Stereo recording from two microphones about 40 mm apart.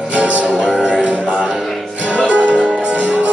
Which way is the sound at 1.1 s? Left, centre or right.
Right.